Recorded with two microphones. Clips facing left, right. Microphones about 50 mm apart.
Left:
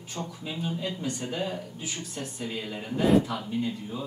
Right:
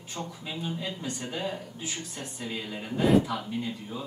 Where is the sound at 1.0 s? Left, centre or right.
Right.